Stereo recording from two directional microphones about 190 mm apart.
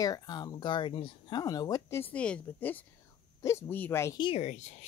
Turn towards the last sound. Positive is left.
turn(degrees=35)  # may be behind; listen again after turning